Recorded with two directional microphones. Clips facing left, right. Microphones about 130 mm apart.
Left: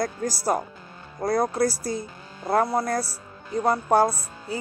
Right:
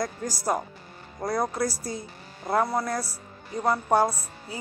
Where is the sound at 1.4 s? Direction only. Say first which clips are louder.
Left 4 dB; 35° left (ahead or behind).